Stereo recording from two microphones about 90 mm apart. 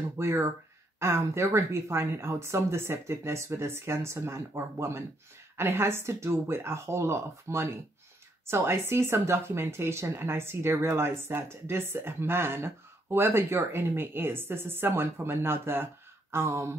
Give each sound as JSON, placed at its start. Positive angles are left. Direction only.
{"t": 0.2, "sound": "speech", "side_deg": -30}